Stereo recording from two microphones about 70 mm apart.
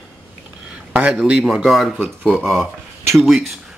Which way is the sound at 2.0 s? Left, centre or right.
Centre.